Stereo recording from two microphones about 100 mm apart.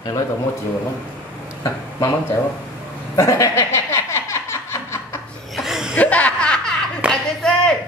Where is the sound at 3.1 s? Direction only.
25° left (ahead or behind).